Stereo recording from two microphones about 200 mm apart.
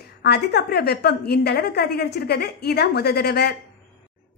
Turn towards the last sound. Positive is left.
turn(degrees=50)  # may be behind; listen again after turning